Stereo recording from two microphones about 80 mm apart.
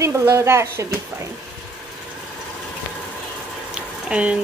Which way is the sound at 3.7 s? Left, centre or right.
Centre.